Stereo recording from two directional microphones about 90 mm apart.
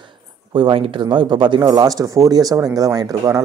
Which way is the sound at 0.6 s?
75° right (ahead or behind).